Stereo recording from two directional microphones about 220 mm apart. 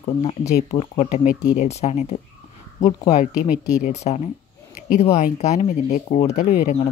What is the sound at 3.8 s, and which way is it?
Speech, 30° left (ahead or behind).